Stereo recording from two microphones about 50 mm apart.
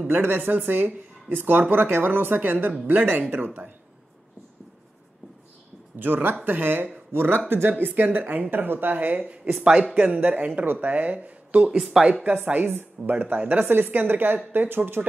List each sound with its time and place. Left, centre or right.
0.1 s speech: right
5.9 s speech: right
8.9 s speech: right
9.6 s speech: centre
9.9 s speech: right
11.7 s speech: centre
12.1 s speech: right
12.6 s speech: right
13.1 s speech: right
13.7 s speech: right